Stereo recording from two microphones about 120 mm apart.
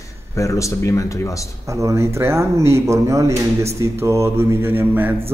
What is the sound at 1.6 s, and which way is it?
Speech, 25° right (ahead or behind).